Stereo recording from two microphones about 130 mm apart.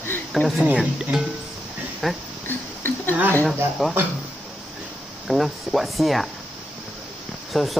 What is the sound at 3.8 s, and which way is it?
Speech, centre (ahead or behind).